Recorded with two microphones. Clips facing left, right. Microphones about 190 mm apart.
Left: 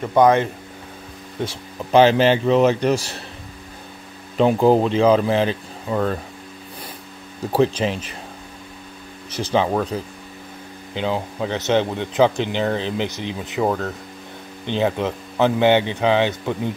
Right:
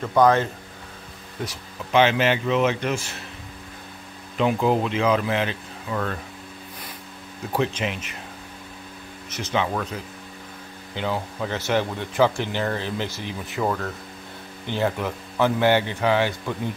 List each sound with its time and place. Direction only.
0.0 s speech: 20° left (ahead or behind)
1.4 s speech: 30° left (ahead or behind)
4.4 s speech: 35° left (ahead or behind)
7.5 s speech: 35° left (ahead or behind)
9.3 s speech: 35° left (ahead or behind)
11.0 s speech: 20° left (ahead or behind)